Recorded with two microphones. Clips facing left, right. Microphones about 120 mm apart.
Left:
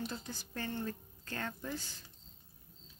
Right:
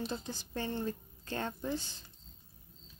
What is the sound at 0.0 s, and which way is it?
A woman's voice, 25° right (ahead or behind).